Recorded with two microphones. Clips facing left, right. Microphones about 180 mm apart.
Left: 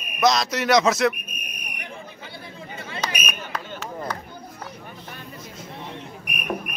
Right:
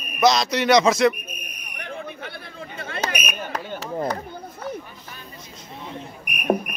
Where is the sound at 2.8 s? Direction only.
60° right (ahead or behind).